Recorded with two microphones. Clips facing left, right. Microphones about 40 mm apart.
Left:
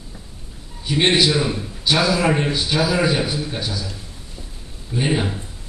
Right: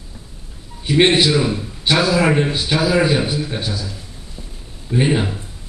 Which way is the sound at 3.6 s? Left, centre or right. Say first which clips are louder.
Right 2 dB; right.